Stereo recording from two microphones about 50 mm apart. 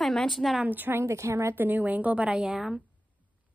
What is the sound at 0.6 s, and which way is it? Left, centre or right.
Speech, right.